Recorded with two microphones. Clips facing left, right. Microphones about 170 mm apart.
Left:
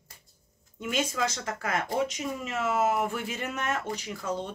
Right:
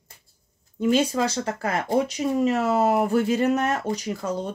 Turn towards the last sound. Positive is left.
turn(degrees=-40)  # may be behind; listen again after turning